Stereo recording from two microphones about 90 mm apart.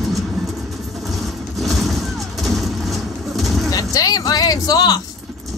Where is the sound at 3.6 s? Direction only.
40° left (ahead or behind).